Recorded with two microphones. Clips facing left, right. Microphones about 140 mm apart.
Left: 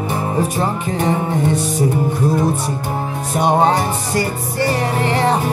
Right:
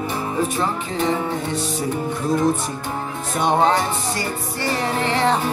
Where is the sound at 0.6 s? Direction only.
45° left (ahead or behind).